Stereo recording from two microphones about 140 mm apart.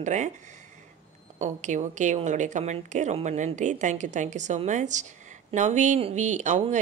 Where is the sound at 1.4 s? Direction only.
60° right (ahead or behind).